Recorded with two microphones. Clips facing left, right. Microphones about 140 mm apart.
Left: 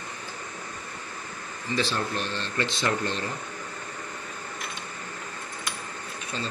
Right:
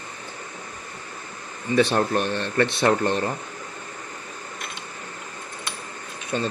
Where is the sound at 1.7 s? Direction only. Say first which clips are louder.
Right 8 dB; 60° right (ahead or behind).